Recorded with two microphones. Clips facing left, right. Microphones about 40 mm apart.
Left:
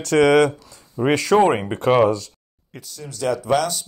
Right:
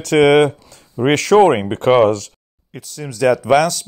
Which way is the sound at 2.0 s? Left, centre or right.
Right.